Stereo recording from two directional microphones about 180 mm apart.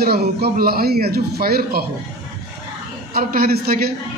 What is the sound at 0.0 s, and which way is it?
A man's voice, 60° right (ahead or behind).